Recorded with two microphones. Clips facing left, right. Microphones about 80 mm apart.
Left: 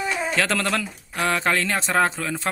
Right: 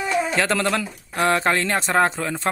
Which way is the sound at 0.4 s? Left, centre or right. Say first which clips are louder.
Right 2 dB; centre.